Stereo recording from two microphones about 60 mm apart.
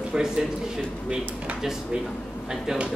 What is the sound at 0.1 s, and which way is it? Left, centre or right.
Speech, centre.